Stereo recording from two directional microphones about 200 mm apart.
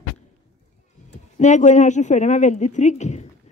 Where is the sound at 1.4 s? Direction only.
35° left (ahead or behind).